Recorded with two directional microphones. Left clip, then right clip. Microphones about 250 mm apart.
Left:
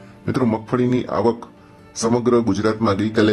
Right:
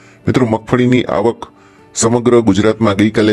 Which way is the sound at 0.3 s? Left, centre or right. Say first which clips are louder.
Right 7 dB; right.